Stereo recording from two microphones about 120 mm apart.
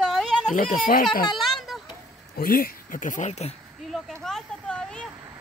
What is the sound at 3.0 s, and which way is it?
Speech, 90° left.